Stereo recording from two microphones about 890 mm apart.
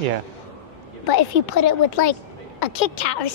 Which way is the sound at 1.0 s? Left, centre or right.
Left.